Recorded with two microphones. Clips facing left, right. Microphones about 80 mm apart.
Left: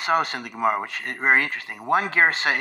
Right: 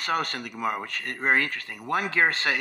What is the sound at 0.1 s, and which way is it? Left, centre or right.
Speech, left.